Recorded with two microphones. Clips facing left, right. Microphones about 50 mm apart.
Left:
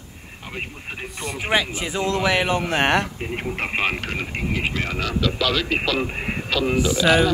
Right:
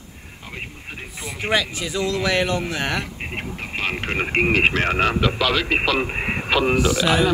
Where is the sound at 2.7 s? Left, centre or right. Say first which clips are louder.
Left 5 dB; left.